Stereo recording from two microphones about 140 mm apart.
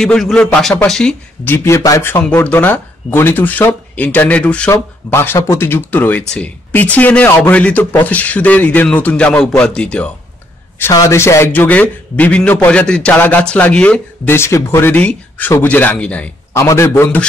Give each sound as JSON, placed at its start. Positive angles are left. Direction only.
{"t": 0.0, "sound": "a man's voice", "side_deg": 5}
{"t": 10.8, "sound": "a man's voice", "side_deg": 25}